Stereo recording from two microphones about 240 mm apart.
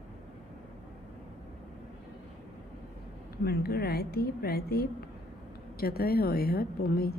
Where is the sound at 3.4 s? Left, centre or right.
Left.